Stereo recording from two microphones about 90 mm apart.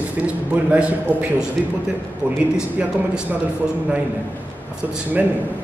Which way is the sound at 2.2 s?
20° left (ahead or behind).